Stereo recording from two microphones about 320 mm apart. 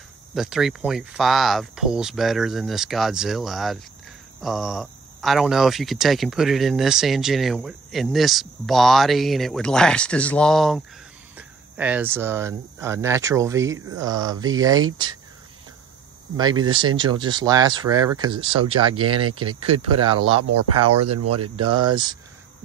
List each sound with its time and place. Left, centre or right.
0.3 s speech: centre
16.3 s speech: centre
18.9 s speech: right
20.3 s speech: right
21.7 s speech: centre